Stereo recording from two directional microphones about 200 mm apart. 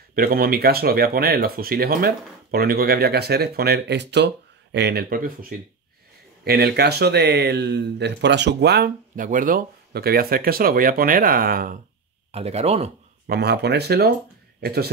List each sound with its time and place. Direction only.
0.1 s speech: 50° right (ahead or behind)
6.4 s speech: 50° right (ahead or behind)
12.3 s speech: 30° right (ahead or behind)
13.3 s a man's voice: 55° right (ahead or behind)